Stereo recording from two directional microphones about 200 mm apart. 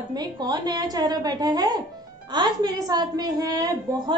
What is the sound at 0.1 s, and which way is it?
A woman's voice, 20° right (ahead or behind).